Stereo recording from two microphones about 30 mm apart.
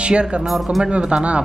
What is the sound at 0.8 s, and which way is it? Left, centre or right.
Speech, right.